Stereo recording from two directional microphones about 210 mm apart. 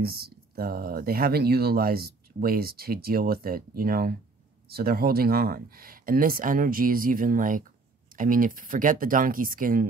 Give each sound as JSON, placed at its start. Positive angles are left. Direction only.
{"t": 0.0, "sound": "speech", "side_deg": -45}